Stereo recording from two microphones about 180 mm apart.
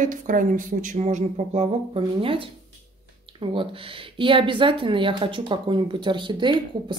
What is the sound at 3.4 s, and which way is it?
A woman's voice, 30° right (ahead or behind).